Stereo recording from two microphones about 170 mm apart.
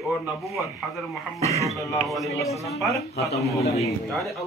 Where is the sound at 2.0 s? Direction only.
Centre (ahead or behind).